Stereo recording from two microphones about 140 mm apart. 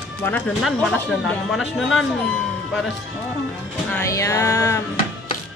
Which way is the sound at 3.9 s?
20° left (ahead or behind).